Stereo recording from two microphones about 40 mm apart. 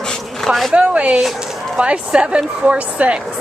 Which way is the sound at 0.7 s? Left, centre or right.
Right.